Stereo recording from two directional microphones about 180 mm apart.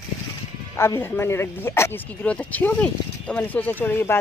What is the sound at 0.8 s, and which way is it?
Speech, 15° left (ahead or behind).